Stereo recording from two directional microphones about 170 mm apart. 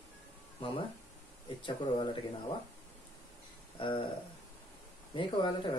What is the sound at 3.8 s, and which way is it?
Speech, 30° left (ahead or behind).